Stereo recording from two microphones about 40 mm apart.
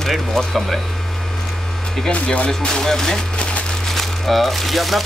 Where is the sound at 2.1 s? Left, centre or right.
Left.